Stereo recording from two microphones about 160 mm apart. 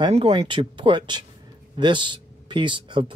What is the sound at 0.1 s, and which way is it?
Speech, 40° right (ahead or behind).